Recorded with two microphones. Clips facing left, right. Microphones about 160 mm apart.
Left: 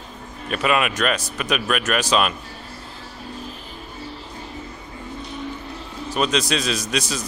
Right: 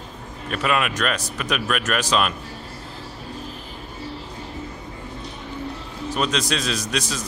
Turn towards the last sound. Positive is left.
turn(degrees=5)  # may be behind; listen again after turning